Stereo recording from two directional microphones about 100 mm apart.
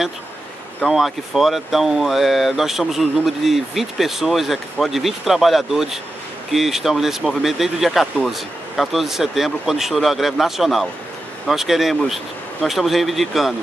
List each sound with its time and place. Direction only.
0.8 s speech: centre (ahead or behind)